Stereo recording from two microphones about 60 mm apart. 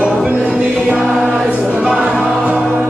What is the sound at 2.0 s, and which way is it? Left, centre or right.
Music, centre.